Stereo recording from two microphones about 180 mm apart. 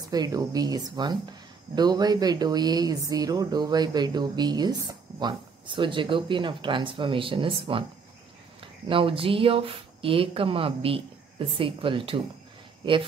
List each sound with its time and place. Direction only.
0.1 s speech: 20° right (ahead or behind)
8.8 s speech: 30° right (ahead or behind)